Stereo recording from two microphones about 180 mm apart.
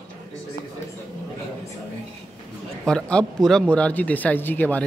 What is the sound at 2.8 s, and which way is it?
Speech, 5° left (ahead or behind).